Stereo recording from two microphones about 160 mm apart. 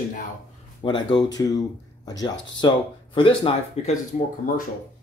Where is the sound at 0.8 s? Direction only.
30° left (ahead or behind).